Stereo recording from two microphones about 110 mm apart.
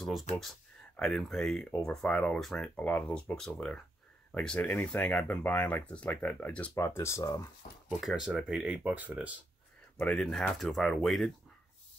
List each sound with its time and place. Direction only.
1.0 s speech: 5° left (ahead or behind); by 7.4 s 30° left (ahead or behind)
8.0 s speech: centre (ahead or behind)
9.9 s speech: 10° left (ahead or behind)